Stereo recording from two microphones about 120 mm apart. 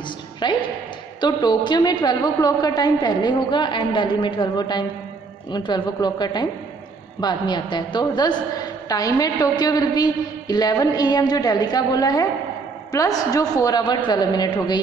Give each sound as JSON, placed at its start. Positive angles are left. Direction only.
{"t": 0.4, "sound": "a woman's voice", "side_deg": 40}